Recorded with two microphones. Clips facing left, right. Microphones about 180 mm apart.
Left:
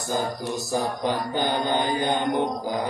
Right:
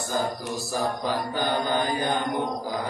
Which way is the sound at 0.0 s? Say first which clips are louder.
Left 1 dB; 20° left (ahead or behind).